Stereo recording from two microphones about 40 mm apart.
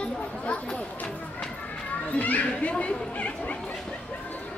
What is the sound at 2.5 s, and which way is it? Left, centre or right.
Chatter, left.